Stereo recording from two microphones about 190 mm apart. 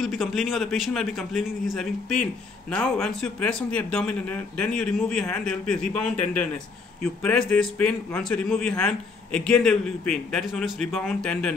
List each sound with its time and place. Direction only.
0.0 s a man's voice: centre (ahead or behind)